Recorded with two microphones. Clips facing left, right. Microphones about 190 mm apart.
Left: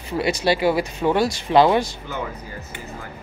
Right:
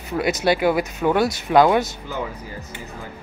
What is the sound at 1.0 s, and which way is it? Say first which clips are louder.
Speech: even; 10° left (ahead or behind).